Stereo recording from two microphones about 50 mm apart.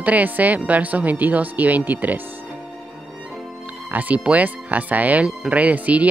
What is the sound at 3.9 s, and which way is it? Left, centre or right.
Speech, right.